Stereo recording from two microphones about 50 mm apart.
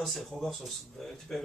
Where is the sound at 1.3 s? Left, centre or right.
Centre.